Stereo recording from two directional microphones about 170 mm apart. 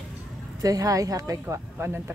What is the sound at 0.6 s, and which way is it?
Speech, 20° right (ahead or behind).